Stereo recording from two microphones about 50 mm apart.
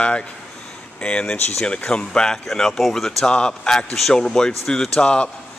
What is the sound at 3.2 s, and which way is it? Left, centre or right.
A man's voice, centre.